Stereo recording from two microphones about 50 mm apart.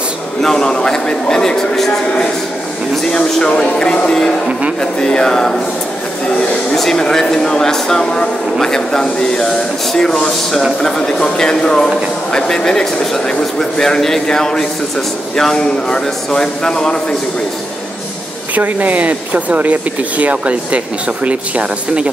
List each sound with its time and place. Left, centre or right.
0.4 s speech: centre
4.5 s speech: right
4.7 s speech: centre
6.8 s speech: centre
18.5 s speech: right